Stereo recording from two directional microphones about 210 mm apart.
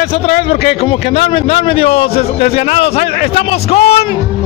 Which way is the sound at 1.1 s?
30° left (ahead or behind).